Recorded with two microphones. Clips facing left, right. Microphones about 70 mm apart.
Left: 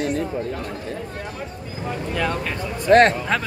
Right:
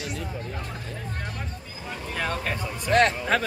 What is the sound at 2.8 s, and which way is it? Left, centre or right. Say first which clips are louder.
Speech: left 7 dB; left.